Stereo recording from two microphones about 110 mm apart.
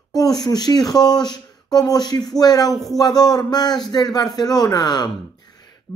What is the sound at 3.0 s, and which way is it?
Speech, 35° left (ahead or behind).